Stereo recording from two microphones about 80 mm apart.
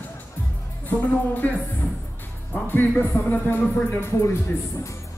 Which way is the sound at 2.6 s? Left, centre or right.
Left.